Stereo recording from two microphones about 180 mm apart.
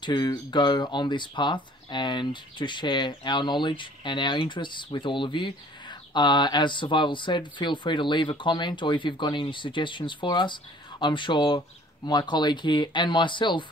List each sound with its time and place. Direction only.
0.0 s speech: 25° left (ahead or behind)